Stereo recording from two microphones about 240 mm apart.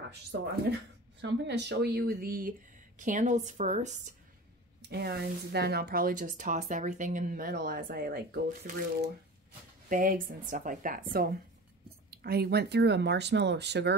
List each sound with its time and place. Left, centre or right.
1.2 s speech: right
4.8 s speech: right
9.8 s speech: right